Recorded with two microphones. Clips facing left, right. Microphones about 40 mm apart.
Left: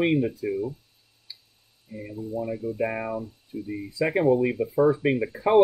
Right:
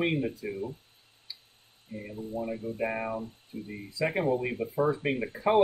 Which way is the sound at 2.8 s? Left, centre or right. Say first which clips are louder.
Left 2 dB; left.